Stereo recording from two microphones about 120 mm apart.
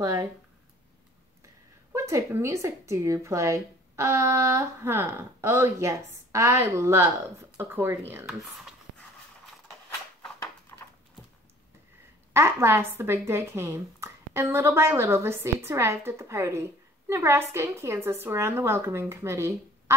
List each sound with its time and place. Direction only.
0.0 s a woman's voice: 30° right (ahead or behind)
1.4 s a woman's voice: 25° right (ahead or behind)
8.3 s speech: centre (ahead or behind)
12.4 s a woman's voice: 20° right (ahead or behind)